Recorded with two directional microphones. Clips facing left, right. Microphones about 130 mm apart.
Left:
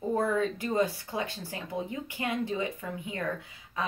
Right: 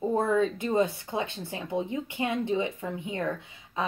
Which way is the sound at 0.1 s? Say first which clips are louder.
Right 1 dB; 25° right (ahead or behind).